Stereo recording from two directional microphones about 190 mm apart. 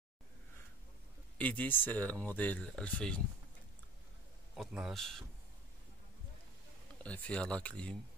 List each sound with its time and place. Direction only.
1.4 s speech: 10° left (ahead or behind)
4.6 s a man's voice: centre (ahead or behind)
7.0 s speech: 5° left (ahead or behind)